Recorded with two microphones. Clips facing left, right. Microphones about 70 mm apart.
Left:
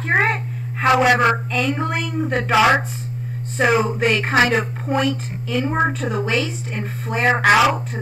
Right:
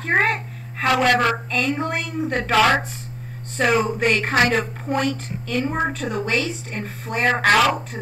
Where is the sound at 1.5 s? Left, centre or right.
Centre.